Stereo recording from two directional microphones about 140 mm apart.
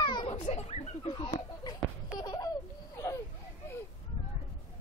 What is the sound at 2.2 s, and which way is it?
Baby laughter, 30° left (ahead or behind).